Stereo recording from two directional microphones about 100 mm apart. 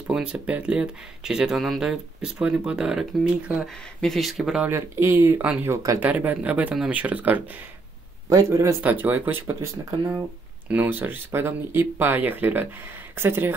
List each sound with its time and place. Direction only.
0.0 s speech: 10° right (ahead or behind)
4.0 s speech: centre (ahead or behind)
4.6 s speech: 25° right (ahead or behind)
5.4 s speech: 15° right (ahead or behind)
5.7 s speech: 35° right (ahead or behind)
5.9 s speech: 15° right (ahead or behind)
8.3 s speech: 30° right (ahead or behind)
9.0 s speech: 15° right (ahead or behind)
10.7 s speech: 20° right (ahead or behind)